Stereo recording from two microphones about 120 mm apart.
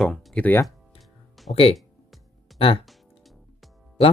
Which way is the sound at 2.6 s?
50° left (ahead or behind).